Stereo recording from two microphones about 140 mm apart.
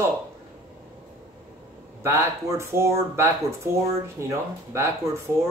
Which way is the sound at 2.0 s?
20° right (ahead or behind).